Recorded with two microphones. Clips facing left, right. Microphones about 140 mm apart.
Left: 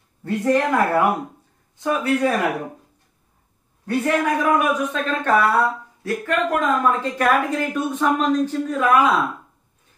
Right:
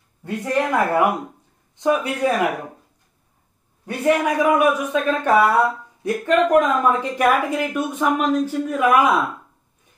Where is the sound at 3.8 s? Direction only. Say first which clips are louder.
Right 1 dB; 15° right (ahead or behind).